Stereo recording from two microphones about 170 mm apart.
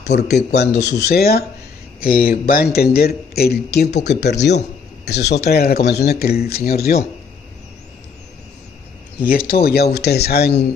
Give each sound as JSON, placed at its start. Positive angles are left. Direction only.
{"t": 0.3, "sound": "a man's voice", "side_deg": 75}
{"t": 9.2, "sound": "a man's voice", "side_deg": 60}